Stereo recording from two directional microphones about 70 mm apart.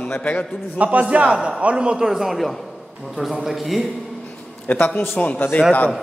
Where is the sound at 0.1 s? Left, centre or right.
Left.